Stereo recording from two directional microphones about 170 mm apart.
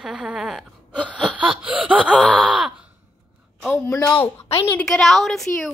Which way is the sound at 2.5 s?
5° right (ahead or behind).